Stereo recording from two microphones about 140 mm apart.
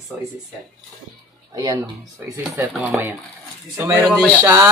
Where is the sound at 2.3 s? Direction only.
20° right (ahead or behind).